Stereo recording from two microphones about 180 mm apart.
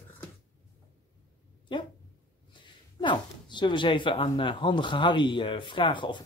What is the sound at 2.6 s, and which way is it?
Speech, 25° left (ahead or behind).